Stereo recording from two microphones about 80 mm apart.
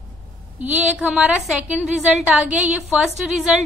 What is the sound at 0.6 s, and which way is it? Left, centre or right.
A woman's voice, centre.